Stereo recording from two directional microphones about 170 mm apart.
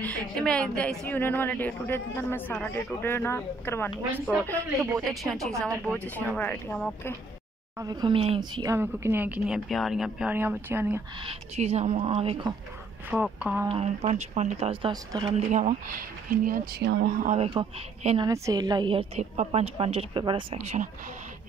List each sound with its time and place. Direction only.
0.0 s a woman's voice: 5° left (ahead or behind)
7.8 s speech: 25° right (ahead or behind)
8.7 s speech: 15° right (ahead or behind)
11.2 s speech: 40° right (ahead or behind)
13.1 s speech: 5° right (ahead or behind)
13.7 s speech: 35° right (ahead or behind); by 16.6 s 55° right (ahead or behind)
16.8 s speech: 70° right (ahead or behind); by 17.5 s 50° right (ahead or behind)
17.6 s speech: 30° right (ahead or behind)